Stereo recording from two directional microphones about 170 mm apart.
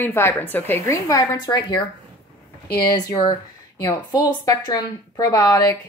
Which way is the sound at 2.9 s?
25° left (ahead or behind).